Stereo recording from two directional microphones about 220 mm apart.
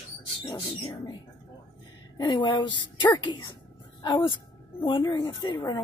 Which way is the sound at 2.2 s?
20° left (ahead or behind).